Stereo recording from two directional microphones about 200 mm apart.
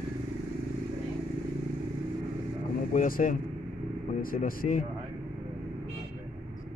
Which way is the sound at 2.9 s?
45° left (ahead or behind).